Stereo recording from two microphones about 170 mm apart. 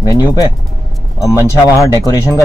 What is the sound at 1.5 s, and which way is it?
Speech, 20° left (ahead or behind).